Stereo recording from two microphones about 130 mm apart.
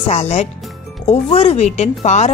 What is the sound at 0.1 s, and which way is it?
Speech, 55° left (ahead or behind).